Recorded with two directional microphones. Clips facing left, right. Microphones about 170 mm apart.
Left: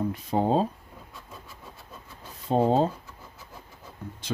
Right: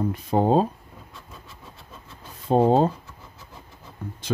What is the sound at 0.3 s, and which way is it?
Speech, 55° right (ahead or behind).